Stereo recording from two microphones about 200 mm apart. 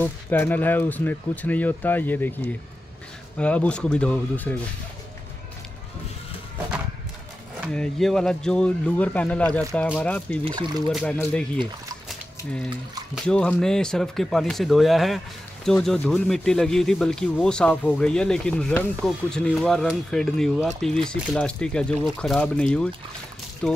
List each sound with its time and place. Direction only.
0.0 s speech: 10° left (ahead or behind)
7.7 s speech: 5° left (ahead or behind)
10.4 s speech: 25° right (ahead or behind)
10.9 s speech: 5° left (ahead or behind)
13.1 s speech: 5° left (ahead or behind)